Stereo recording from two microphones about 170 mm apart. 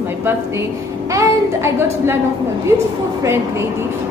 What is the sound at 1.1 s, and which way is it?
Speech, 15° right (ahead or behind).